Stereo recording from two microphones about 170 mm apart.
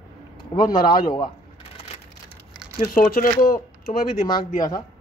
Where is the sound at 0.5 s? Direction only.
25° left (ahead or behind).